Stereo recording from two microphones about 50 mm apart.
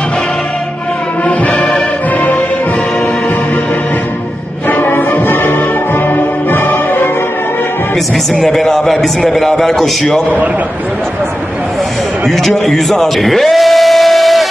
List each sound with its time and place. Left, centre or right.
1.5 s music: centre
4.6 s music: left
8.4 s a man's voice: centre
12.3 s speech: centre